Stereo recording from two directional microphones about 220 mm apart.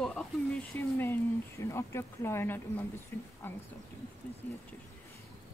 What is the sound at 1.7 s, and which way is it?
Speech, 10° left (ahead or behind).